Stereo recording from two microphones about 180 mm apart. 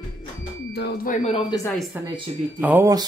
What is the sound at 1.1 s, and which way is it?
Speech, 35° left (ahead or behind).